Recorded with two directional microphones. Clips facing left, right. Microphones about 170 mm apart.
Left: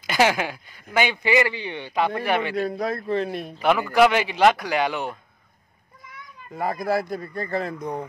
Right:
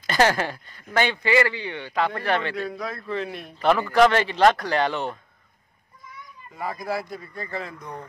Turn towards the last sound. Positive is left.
turn(degrees=45)  # may be behind; listen again after turning